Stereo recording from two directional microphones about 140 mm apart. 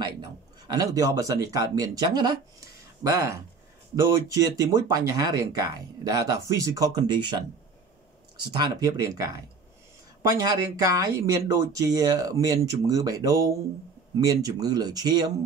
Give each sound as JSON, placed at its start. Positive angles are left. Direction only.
{"t": 0.0, "sound": "speech", "side_deg": -30}
{"t": 8.5, "sound": "speech", "side_deg": -30}